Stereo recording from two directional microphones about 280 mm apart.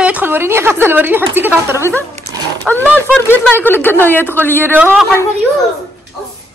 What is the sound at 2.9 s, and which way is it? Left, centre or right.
Speech, centre.